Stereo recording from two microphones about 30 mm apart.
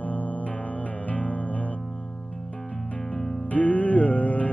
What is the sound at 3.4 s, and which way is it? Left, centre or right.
Music, left.